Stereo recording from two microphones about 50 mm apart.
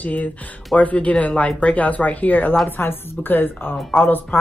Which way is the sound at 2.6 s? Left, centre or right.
Left.